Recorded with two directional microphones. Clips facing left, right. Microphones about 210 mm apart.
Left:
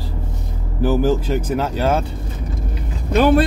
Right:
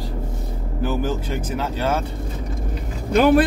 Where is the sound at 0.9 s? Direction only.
40° left (ahead or behind).